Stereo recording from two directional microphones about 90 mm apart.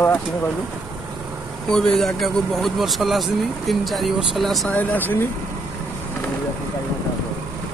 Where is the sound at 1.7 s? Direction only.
5° left (ahead or behind).